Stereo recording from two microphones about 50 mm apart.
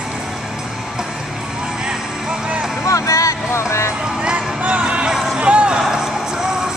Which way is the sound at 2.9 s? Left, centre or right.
Left.